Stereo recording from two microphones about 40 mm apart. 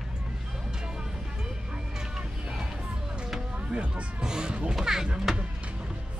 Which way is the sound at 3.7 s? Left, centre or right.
Right.